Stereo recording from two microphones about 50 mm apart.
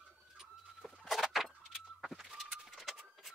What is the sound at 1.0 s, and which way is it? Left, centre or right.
Vehicle, centre.